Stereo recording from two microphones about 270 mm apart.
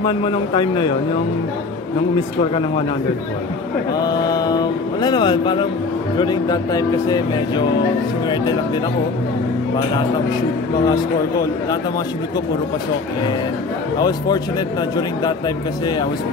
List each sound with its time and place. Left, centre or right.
0.0 s speech: centre
4.0 s a sound: centre
6.1 s speech: centre
10.9 s speech: centre
15.0 s speech: centre